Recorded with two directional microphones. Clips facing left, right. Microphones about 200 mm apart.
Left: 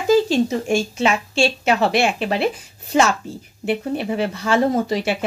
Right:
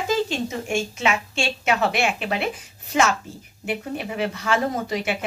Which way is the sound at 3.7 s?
30° left (ahead or behind).